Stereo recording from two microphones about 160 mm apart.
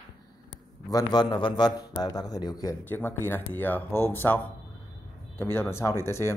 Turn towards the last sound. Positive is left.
turn(degrees=15)  # may be behind; listen again after turning